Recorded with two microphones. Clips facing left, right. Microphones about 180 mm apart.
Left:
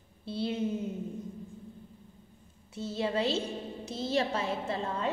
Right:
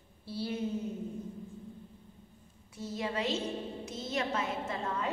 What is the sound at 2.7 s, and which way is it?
A woman's voice, 25° left (ahead or behind).